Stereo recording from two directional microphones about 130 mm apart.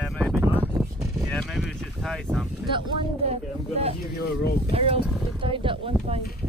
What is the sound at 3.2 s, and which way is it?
Speech, 55° right (ahead or behind).